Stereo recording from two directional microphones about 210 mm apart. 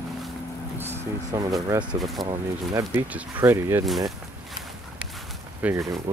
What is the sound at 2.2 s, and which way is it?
Speech, 15° right (ahead or behind).